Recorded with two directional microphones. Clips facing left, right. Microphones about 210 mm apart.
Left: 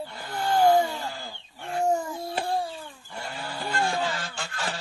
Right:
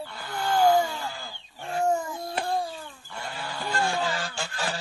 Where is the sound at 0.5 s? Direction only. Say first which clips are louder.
Left 1 dB; 30° left (ahead or behind).